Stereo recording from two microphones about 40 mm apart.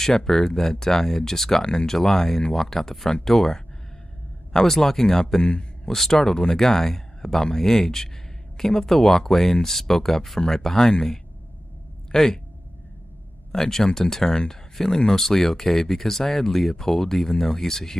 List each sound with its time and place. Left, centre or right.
0.0 s speech: centre
5.4 s a man's voice: left
5.9 s speech: centre
13.5 s speech: centre